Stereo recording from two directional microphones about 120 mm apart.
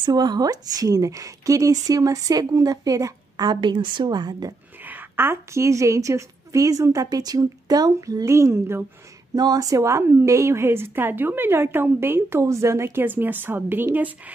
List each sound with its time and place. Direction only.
0.0 s speech: 35° right (ahead or behind)
4.8 s a woman's voice: 15° right (ahead or behind)